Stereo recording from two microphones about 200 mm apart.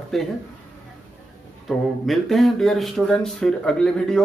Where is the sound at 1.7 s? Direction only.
Centre (ahead or behind).